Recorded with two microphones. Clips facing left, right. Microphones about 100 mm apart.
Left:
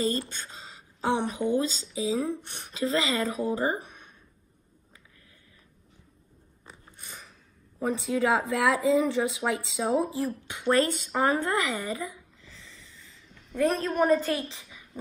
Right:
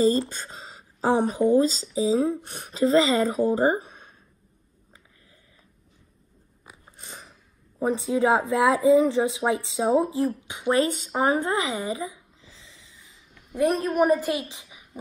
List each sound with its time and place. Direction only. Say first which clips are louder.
0.0 s speech: right 7 dB; 30° right (ahead or behind)
6.9 s biting: right 4 dB; 30° right (ahead or behind)
7.8 s a woman's voice: right 4 dB; 25° right (ahead or behind)